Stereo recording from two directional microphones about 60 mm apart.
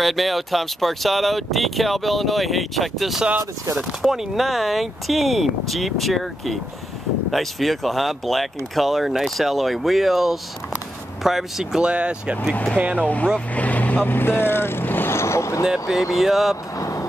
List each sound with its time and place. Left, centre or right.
0.0 s speech: centre; by 13.0 s right
13.0 s speech: left
15.1 s vehicle: left
15.6 s speech: centre
16.7 s vehicle: left